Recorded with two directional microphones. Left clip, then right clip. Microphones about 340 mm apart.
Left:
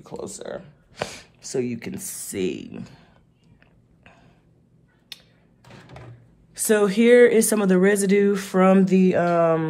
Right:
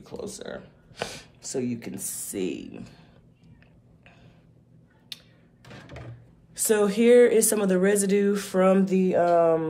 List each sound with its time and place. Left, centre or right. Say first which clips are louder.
0.0 s speech: left 3 dB; centre
6.5 s speech: left 3 dB; left